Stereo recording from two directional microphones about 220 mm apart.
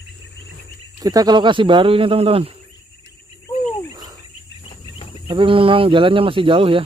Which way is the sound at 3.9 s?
15° right (ahead or behind).